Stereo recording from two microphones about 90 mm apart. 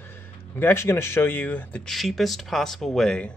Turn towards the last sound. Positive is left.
turn(degrees=10)  # may be behind; listen again after turning